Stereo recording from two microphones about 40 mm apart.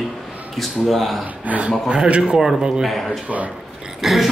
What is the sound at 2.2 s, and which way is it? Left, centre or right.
Speech, centre.